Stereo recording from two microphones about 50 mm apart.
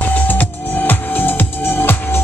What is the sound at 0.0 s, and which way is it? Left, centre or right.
Music, left.